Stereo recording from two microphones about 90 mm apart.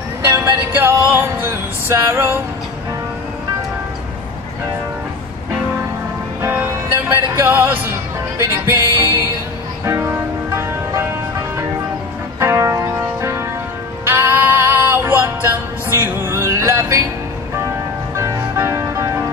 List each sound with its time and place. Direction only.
0.3 s music: 25° right (ahead or behind)
6.4 s music: 25° right (ahead or behind)
12.4 s music: 30° right (ahead or behind)
18.1 s music: 30° right (ahead or behind)